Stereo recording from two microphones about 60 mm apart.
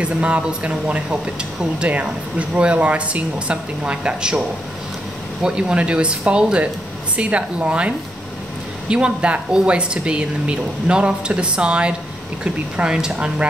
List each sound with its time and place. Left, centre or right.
0.0 s speech: centre